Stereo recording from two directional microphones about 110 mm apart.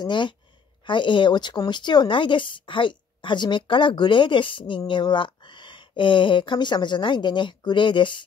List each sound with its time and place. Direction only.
0.0 s speech: 45° left (ahead or behind)